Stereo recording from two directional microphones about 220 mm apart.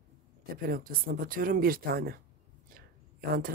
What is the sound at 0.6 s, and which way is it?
A woman's voice, 40° right (ahead or behind).